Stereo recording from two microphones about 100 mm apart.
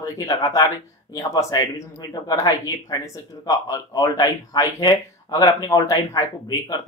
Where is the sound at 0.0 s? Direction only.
35° left (ahead or behind).